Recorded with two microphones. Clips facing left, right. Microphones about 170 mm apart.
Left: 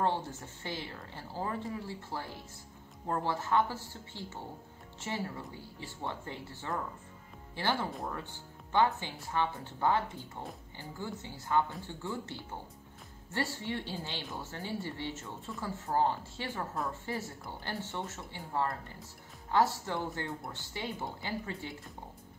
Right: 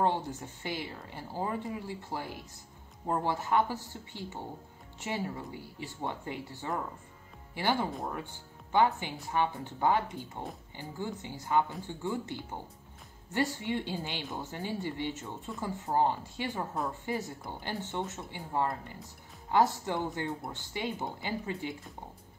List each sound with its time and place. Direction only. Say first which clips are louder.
0.0 s speech: right 2 dB; 15° right (ahead or behind)